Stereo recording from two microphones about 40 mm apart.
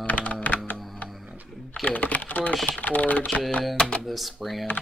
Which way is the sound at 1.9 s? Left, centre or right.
Left.